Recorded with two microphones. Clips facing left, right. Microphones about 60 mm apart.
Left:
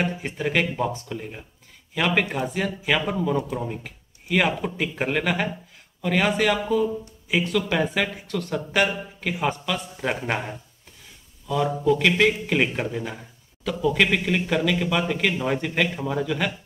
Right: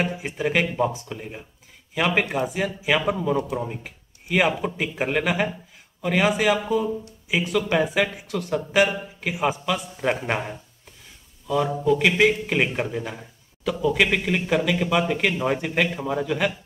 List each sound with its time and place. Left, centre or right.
0.0 s a man's voice: centre